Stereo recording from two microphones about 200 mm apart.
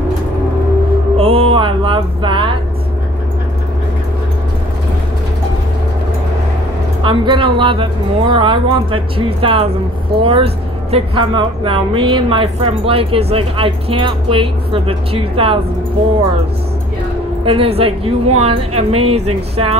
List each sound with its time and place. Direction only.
1.1 s music: 25° right (ahead or behind)
7.0 s speech: 25° right (ahead or behind)
17.5 s speech: 30° right (ahead or behind)